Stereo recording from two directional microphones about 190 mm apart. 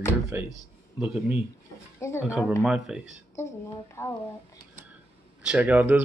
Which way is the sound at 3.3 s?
15° left (ahead or behind).